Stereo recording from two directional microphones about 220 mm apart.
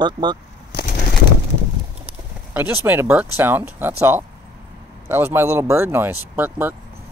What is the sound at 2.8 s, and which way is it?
Speech, 5° right (ahead or behind).